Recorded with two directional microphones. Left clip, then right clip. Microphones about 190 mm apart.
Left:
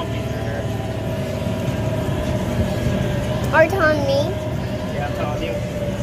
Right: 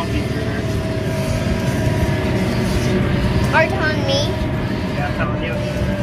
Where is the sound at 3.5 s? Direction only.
20° left (ahead or behind).